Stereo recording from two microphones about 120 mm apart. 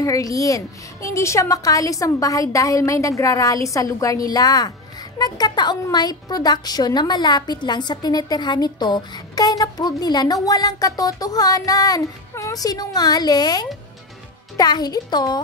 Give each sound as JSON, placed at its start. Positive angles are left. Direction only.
{"t": 0.0, "sound": "a woman's voice", "side_deg": 30}